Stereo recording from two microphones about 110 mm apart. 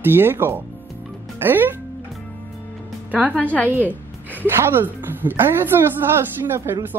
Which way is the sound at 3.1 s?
15° right (ahead or behind).